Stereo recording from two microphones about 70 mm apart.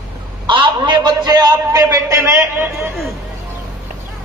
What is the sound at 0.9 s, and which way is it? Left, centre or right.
Speech, right.